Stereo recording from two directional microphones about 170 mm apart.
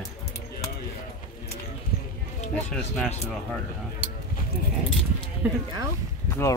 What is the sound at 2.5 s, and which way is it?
Speech, 5° left (ahead or behind).